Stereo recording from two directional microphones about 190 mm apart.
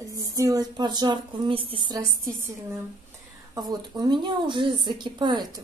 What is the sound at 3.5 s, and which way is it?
A woman's voice, 20° right (ahead or behind).